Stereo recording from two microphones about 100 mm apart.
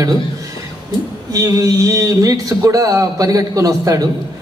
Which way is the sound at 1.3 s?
35° right (ahead or behind).